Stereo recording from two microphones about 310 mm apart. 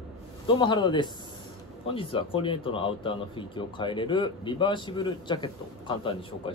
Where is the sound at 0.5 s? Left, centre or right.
Centre.